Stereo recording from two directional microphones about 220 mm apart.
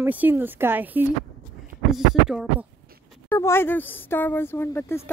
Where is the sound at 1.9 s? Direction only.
Centre (ahead or behind).